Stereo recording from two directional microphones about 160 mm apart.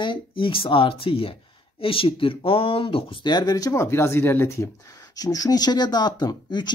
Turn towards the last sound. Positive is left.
turn(degrees=25)  # may be behind; listen again after turning